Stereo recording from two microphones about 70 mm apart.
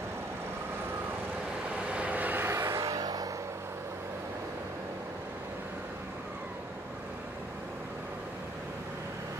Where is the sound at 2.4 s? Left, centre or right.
Right.